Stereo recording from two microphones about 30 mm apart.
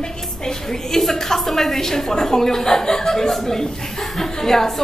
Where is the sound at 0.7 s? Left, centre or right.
Centre.